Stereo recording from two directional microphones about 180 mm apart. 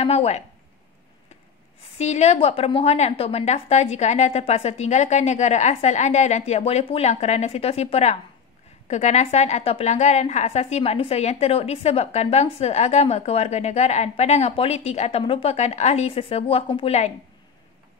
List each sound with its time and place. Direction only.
0.0 s speech: 35° left (ahead or behind)
2.0 s a woman's voice: 40° left (ahead or behind)